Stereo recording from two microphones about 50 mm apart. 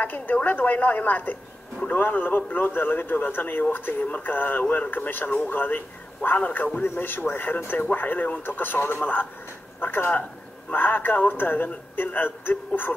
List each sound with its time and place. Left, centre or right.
0.0 s speech: left